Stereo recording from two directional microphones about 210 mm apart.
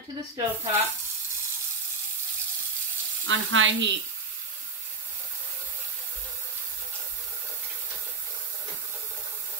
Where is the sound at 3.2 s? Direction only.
65° right (ahead or behind).